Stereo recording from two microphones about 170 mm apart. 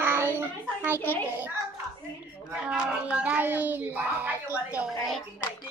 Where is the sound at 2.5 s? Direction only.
5° right (ahead or behind).